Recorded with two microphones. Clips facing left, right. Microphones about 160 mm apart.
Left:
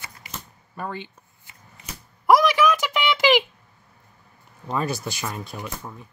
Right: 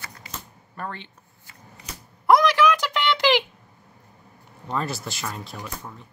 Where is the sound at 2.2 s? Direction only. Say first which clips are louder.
Even; 5° left (ahead or behind).